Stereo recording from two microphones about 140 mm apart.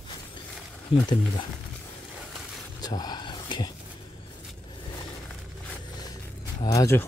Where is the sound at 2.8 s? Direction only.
30° left (ahead or behind).